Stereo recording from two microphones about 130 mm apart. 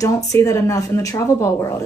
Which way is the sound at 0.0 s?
25° left (ahead or behind).